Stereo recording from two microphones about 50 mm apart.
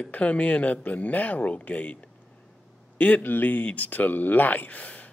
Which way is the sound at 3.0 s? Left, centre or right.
Left.